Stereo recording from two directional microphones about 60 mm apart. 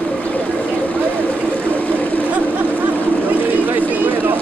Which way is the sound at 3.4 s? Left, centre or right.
Right.